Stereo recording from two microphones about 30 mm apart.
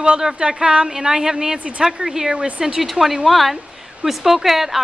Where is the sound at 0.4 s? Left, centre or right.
Right.